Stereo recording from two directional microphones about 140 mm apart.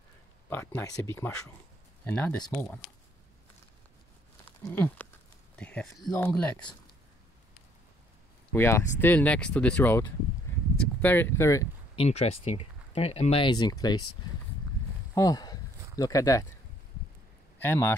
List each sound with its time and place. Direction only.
0.5 s speech: 15° left (ahead or behind)
4.6 s speech: 15° left (ahead or behind)
8.5 s speech: 20° left (ahead or behind)
11.9 s speech: 45° left (ahead or behind); by 14.0 s 30° left (ahead or behind)
15.1 s speech: 25° left (ahead or behind)
17.6 s speech: 15° left (ahead or behind)